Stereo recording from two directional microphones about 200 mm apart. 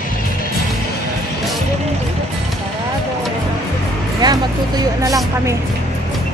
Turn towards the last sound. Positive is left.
turn(degrees=-20)  # may be behind; listen again after turning